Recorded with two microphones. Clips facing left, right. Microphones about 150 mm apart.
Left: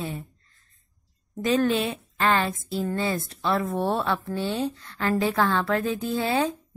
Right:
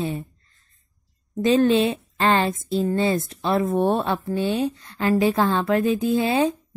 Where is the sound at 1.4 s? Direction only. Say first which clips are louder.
Right 5 dB; 25° right (ahead or behind).